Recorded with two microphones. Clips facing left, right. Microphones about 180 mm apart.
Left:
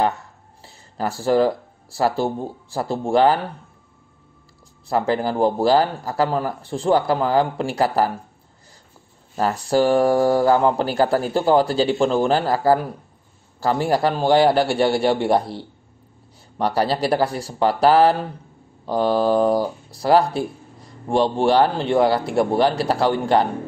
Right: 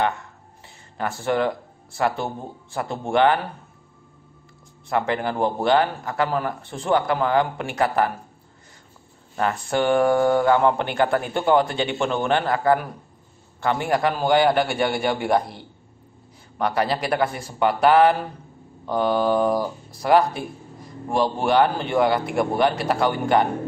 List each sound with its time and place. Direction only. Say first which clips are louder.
0.9 s speech: left 5 dB; 35° left (ahead or behind)
4.8 s speech: left 3 dB; 35° left (ahead or behind)
9.4 s speech: left 4 dB; 35° left (ahead or behind)